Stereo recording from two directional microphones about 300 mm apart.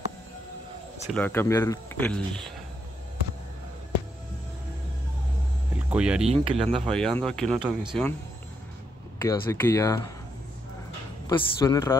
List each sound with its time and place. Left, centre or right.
1.1 s speech: centre
5.8 s speech: centre
6.4 s speech: centre
6.7 s speech: centre
9.2 s speech: centre
11.2 s speech: centre